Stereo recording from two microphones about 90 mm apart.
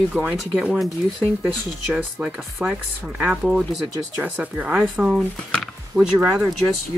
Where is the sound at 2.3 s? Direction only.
Centre (ahead or behind); by 4.8 s 15° right (ahead or behind).